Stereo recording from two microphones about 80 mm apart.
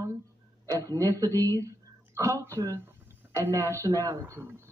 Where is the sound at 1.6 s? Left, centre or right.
Right.